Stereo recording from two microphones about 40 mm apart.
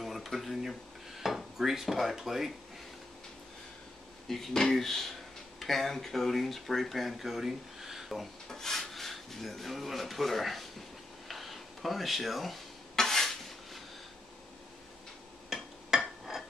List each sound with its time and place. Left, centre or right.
0.0 s dishes: centre
4.3 s speech: centre
8.5 s speech: centre
11.2 s a sound: centre
12.9 s dishes: centre
15.5 s a sound: centre
15.9 s dishes: centre
16.3 s glass: centre